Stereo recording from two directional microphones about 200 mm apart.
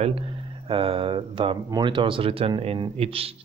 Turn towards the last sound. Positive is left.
turn(degrees=-30)  # may be behind; listen again after turning